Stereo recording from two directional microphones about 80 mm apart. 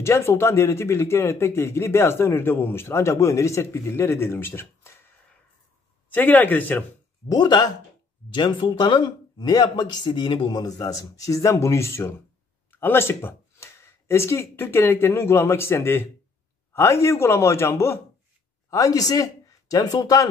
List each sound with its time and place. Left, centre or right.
0.0 s speech: left
6.0 s a man's voice: left
7.2 s speech: left
8.3 s speech: left
18.7 s speech: left